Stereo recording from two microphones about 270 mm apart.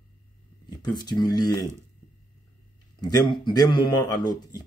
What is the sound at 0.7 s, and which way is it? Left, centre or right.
Speech, centre.